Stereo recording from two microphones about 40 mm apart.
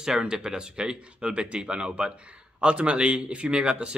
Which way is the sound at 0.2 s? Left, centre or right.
Centre.